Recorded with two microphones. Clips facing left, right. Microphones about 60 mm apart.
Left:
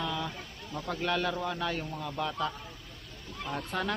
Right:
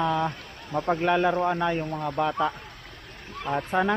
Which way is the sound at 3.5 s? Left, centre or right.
Right.